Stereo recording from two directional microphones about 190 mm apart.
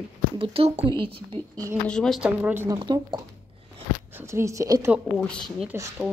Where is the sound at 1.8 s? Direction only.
5° left (ahead or behind); by 4.9 s 15° right (ahead or behind).